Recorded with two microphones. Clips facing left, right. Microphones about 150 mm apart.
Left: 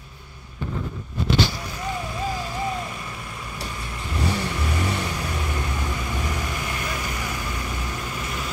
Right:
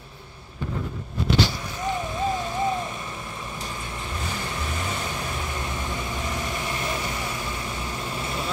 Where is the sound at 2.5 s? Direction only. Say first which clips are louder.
Right 2 dB; 25° right (ahead or behind).